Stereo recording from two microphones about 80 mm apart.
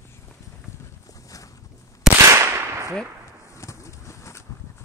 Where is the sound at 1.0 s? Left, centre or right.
Left.